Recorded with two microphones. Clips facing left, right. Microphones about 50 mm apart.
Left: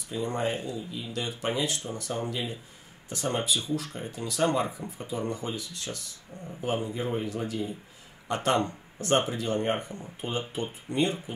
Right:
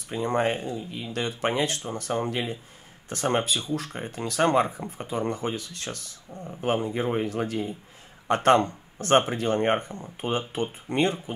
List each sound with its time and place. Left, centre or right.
0.1 s speech: right